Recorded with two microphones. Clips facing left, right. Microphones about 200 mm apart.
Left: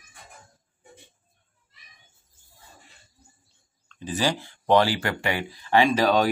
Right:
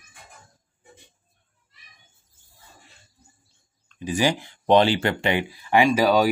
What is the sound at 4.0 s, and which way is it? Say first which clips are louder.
Speech: right 3 dB; 15° right (ahead or behind).